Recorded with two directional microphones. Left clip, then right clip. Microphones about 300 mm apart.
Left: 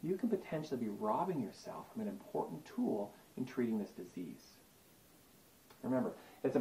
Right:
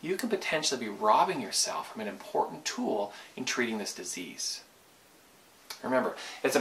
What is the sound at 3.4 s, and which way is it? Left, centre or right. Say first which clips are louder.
Speech: right 9 dB; centre.